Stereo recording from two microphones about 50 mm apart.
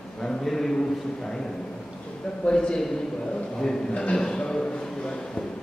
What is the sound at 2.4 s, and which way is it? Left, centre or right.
A man's voice, centre.